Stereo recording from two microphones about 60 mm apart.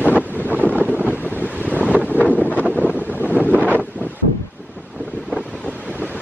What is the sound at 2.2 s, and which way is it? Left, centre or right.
Wind noise, left.